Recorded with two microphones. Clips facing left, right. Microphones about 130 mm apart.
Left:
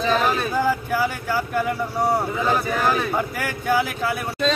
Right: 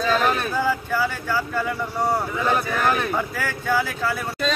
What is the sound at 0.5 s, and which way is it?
Speech, 15° left (ahead or behind).